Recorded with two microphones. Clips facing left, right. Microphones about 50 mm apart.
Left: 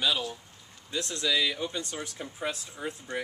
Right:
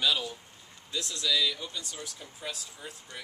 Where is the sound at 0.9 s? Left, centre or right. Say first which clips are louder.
Left 2 dB; left.